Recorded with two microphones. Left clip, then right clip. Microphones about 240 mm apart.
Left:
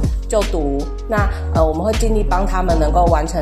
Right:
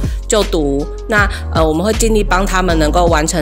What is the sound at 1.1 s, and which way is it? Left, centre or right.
Speech, right.